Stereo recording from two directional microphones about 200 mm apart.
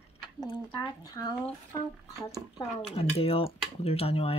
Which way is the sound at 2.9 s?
30° left (ahead or behind).